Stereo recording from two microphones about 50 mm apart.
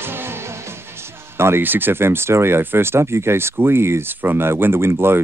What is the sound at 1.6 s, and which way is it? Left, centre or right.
Speech, right.